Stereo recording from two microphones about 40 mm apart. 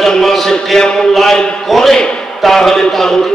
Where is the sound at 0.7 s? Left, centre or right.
Centre.